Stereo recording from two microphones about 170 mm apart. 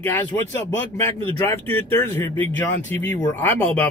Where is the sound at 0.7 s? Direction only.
15° left (ahead or behind).